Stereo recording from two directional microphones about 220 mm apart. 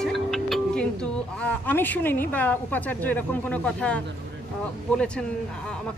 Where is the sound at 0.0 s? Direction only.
Centre (ahead or behind).